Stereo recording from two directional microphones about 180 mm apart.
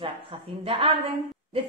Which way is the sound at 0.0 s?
30° right (ahead or behind).